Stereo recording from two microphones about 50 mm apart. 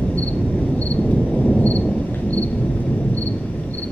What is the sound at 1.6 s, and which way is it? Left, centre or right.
Thunder, left.